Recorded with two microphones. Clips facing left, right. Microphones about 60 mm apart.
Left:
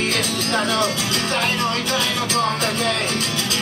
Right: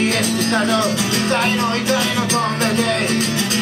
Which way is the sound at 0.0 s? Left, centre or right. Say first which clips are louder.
Right 4 dB; right.